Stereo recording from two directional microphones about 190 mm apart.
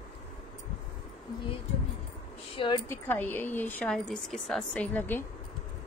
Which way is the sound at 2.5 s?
25° left (ahead or behind).